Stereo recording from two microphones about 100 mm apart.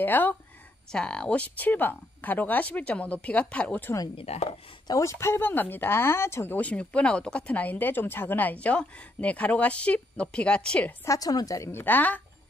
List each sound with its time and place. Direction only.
0.0 s speech: 20° left (ahead or behind)
0.9 s speech: 10° left (ahead or behind)
4.2 s speech: 80° left
4.8 s speech: 30° left (ahead or behind); by 11.0 s 10° left (ahead or behind)
11.1 s a woman's voice: 40° left (ahead or behind); by 12.2 s 15° left (ahead or behind)